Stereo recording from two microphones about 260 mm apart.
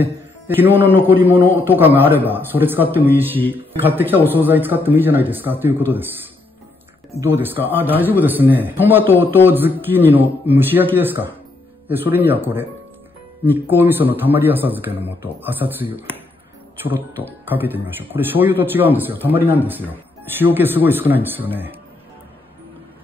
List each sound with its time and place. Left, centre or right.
0.6 s a man's voice: centre
7.2 s a man's voice: centre